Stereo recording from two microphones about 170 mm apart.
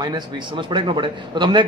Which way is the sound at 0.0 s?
25° right (ahead or behind).